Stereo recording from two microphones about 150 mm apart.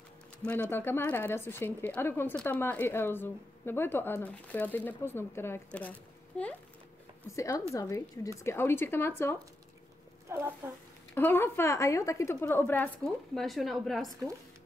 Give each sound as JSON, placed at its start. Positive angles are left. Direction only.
{"t": 0.5, "sound": "speech", "side_deg": 10}
{"t": 7.2, "sound": "a woman's voice", "side_deg": 20}
{"t": 10.2, "sound": "speech", "side_deg": -15}
{"t": 11.1, "sound": "speech", "side_deg": 15}
{"t": 13.0, "sound": "speech", "side_deg": 0}